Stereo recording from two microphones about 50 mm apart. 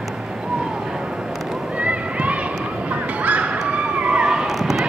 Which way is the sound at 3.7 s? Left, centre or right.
Right.